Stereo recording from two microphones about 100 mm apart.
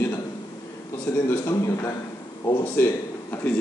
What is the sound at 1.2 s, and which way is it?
A man's voice, 25° left (ahead or behind).